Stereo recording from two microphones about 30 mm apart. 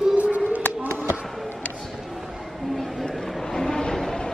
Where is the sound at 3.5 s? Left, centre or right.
Centre.